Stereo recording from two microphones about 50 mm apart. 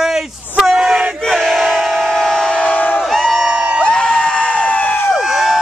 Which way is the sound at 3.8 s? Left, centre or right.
Centre.